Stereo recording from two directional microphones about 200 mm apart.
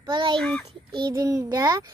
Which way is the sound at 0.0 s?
25° right (ahead or behind).